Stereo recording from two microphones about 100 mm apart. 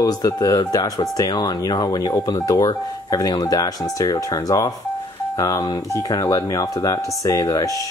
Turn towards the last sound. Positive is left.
turn(degrees=35)  # may be behind; listen again after turning